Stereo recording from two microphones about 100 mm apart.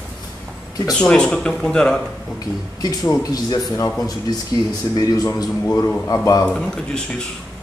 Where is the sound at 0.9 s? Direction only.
10° left (ahead or behind).